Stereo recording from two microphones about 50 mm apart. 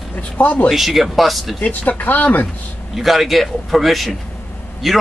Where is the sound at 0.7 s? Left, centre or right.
Centre.